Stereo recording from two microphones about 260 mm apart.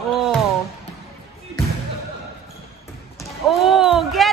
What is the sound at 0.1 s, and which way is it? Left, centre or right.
Music, centre.